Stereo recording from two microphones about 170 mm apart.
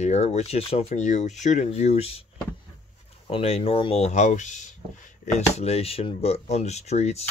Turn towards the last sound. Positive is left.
turn(degrees=40)  # may be behind; listen again after turning